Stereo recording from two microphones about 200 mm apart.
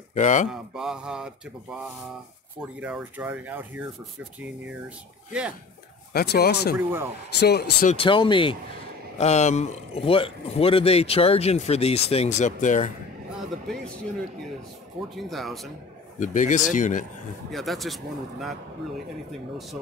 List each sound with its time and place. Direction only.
0.1 s speech: 40° left (ahead or behind)
0.5 s speech: 5° right (ahead or behind)
2.8 s speech: 10° right (ahead or behind)
6.1 s speech: 50° left (ahead or behind)
6.8 s speech: 10° right (ahead or behind)
7.3 s speech: 55° left (ahead or behind)
7.9 s speech: 25° left (ahead or behind)
15.2 s speech: centre (ahead or behind)
16.2 s speech: 40° left (ahead or behind)
17.5 s speech: centre (ahead or behind)